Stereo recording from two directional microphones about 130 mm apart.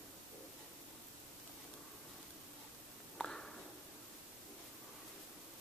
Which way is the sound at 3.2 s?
5° left (ahead or behind).